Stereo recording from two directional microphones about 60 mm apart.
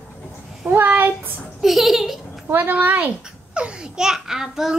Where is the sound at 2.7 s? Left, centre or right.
Right.